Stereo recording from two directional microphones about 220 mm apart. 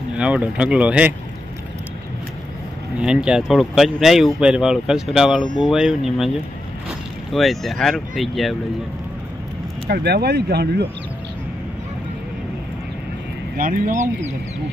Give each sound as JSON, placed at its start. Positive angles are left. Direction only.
{"t": 0.2, "sound": "speech", "side_deg": -5}
{"t": 3.0, "sound": "speech", "side_deg": -5}
{"t": 7.3, "sound": "speech", "side_deg": 0}
{"t": 9.8, "sound": "speech", "side_deg": -45}
{"t": 13.6, "sound": "speech", "side_deg": -40}